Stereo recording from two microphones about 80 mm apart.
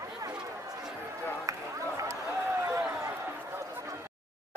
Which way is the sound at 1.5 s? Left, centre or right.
Right.